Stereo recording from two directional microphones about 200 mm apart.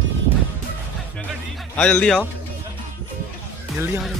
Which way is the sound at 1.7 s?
5° left (ahead or behind).